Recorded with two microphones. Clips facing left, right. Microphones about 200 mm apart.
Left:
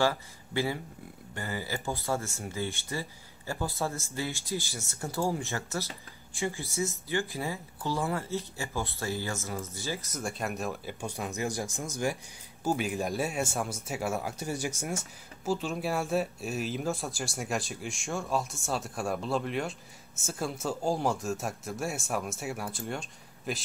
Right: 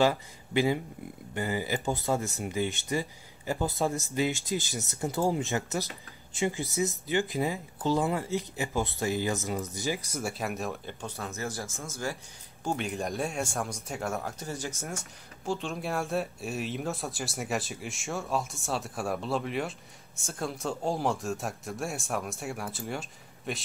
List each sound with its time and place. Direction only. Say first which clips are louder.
0.0 s speech: right 3 dB; 20° right (ahead or behind); by 12.2 s 15° left (ahead or behind)
12.6 s speech: left 2 dB; 5° left (ahead or behind)